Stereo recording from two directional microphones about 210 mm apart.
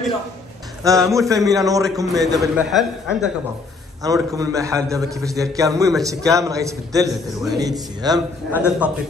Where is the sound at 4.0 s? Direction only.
15° right (ahead or behind).